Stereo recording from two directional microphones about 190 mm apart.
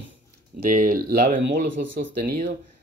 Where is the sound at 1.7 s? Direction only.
80° right.